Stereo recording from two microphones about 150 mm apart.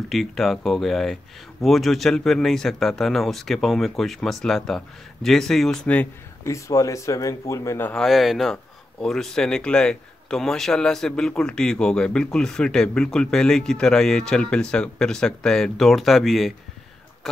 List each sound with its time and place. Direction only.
0.1 s a man's voice: centre (ahead or behind)
6.4 s speech: 20° left (ahead or behind)
7.9 s a man's voice: centre (ahead or behind)